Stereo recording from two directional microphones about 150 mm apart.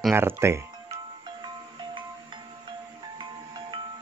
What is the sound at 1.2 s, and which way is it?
Music, 30° right (ahead or behind).